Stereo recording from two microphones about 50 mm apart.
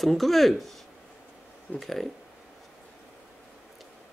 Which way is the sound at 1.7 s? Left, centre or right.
Centre.